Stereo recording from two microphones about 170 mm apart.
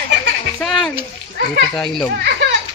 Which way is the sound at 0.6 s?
Centre (ahead or behind).